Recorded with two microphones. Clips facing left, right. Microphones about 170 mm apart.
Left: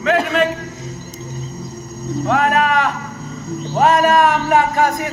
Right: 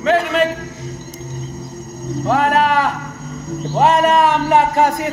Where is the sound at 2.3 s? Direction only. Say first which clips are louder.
Right 1 dB; 30° right (ahead or behind).